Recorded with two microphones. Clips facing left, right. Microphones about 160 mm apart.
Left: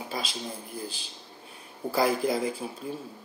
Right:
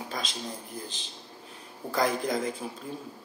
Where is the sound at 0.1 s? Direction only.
5° left (ahead or behind).